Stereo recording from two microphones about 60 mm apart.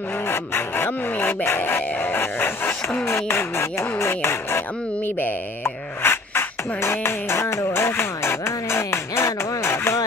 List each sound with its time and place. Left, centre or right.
0.3 s speech: left
3.1 s music: left